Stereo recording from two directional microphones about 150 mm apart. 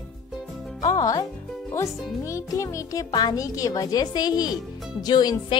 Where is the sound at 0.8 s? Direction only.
25° left (ahead or behind).